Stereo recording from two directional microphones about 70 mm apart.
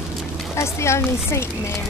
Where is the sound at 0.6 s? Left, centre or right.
Left.